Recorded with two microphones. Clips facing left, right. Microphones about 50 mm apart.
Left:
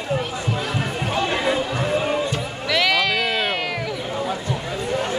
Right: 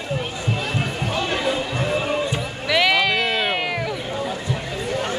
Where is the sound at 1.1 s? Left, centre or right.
Left.